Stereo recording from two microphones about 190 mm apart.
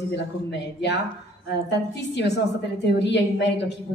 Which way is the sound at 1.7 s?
65° left (ahead or behind).